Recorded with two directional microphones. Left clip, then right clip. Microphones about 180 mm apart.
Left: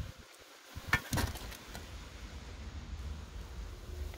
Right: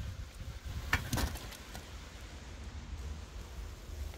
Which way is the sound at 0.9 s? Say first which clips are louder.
Left 2 dB; 15° left (ahead or behind).